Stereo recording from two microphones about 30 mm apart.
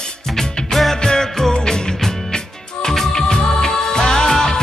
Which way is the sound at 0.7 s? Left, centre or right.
Centre.